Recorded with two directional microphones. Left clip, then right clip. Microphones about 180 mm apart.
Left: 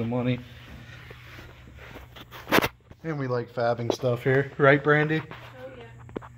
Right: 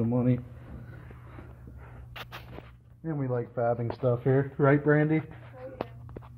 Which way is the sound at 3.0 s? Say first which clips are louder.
Left 3 dB; 20° left (ahead or behind).